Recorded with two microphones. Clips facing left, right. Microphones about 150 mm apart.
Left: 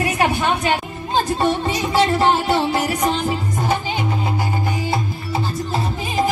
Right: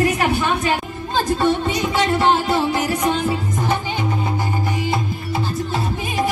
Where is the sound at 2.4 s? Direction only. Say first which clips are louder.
Left 1 dB; 30° left (ahead or behind).